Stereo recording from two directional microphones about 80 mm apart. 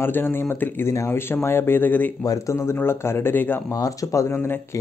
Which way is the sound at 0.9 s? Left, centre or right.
Left.